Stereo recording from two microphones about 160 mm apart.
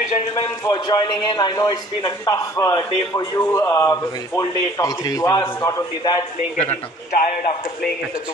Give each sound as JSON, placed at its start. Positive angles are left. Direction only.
{"t": 0.7, "sound": "a man's voice", "side_deg": 25}
{"t": 6.5, "sound": "a man's voice", "side_deg": 45}